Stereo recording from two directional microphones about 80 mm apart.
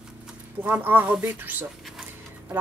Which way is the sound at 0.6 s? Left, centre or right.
Right.